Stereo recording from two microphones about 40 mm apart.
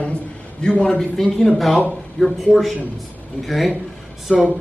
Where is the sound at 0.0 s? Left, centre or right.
Left.